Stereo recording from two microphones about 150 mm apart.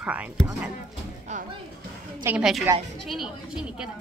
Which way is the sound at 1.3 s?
50° right (ahead or behind).